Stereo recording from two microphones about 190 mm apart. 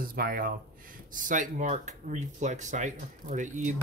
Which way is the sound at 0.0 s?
50° right (ahead or behind).